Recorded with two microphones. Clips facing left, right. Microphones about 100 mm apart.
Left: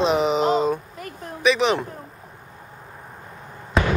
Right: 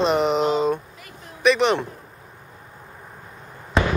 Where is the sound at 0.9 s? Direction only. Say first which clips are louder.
Left 8 dB; 45° left (ahead or behind).